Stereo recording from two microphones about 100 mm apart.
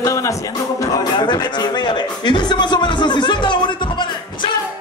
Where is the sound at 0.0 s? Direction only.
30° left (ahead or behind).